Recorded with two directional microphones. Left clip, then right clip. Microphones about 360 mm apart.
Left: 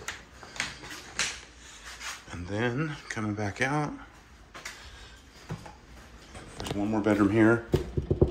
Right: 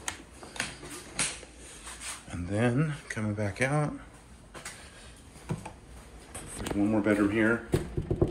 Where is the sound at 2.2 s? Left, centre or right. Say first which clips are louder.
Right 2 dB; centre.